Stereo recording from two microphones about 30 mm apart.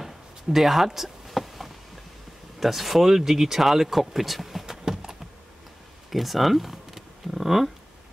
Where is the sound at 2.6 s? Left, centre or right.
Centre.